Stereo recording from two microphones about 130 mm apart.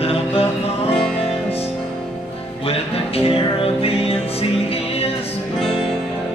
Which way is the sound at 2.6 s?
50° left (ahead or behind).